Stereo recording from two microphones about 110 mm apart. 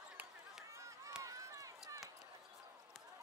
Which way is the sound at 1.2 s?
30° right (ahead or behind).